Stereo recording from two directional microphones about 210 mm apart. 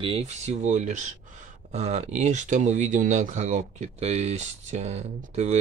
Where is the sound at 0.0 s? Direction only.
30° right (ahead or behind).